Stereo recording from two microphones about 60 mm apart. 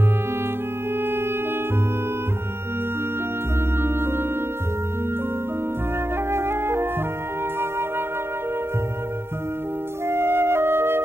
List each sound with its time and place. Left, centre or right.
3.8 s music: right
6.3 s music: right
10.0 s flute: right